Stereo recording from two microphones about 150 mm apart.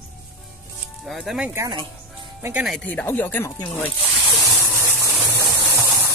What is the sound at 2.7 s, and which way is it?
Chopping, 10° left (ahead or behind).